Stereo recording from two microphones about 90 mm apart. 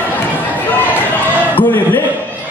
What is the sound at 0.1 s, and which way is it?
Chatter, 20° left (ahead or behind).